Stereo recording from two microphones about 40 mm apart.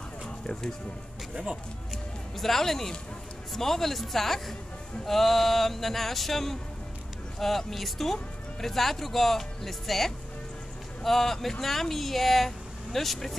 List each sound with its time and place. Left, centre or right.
0.5 s speech: centre
1.3 s speech: right
2.3 s speech: centre